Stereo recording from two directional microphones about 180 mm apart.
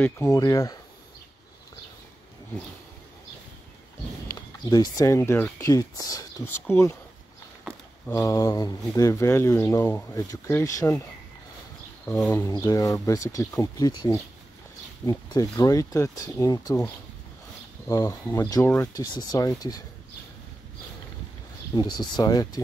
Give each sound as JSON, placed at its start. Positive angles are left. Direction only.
{"t": 0.0, "sound": "speech", "side_deg": 15}
{"t": 4.6, "sound": "speech", "side_deg": 20}
{"t": 8.1, "sound": "speech", "side_deg": 20}
{"t": 12.2, "sound": "speech", "side_deg": 10}
{"t": 17.8, "sound": "speech", "side_deg": 20}
{"t": 21.7, "sound": "speech", "side_deg": 25}